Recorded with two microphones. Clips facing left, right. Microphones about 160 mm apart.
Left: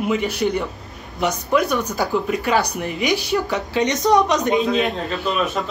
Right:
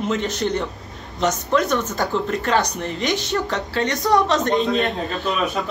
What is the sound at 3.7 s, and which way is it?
Speech, 20° left (ahead or behind).